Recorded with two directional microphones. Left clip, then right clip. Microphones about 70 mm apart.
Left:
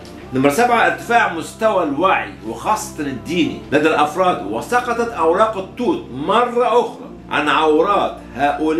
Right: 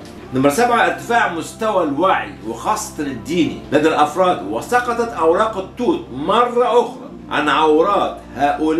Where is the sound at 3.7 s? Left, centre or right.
Centre.